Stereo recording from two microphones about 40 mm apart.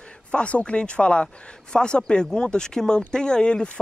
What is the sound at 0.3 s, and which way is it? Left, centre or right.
Speech, left.